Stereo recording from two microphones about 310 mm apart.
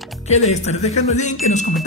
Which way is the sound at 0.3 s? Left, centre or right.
Left.